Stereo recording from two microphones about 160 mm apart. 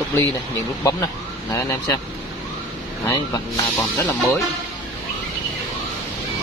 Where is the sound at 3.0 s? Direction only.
20° left (ahead or behind).